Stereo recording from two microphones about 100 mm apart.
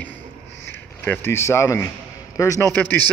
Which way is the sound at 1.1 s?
25° left (ahead or behind).